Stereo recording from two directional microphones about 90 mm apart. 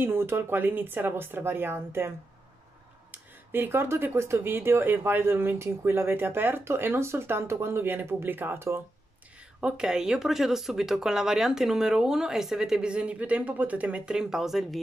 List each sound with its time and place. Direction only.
0.0 s speech: 25° right (ahead or behind)
9.6 s speech: 10° right (ahead or behind)